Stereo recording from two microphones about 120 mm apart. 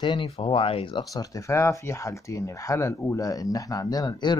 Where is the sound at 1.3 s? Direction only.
25° left (ahead or behind).